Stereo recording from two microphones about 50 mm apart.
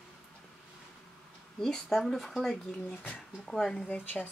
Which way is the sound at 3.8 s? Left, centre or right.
Left.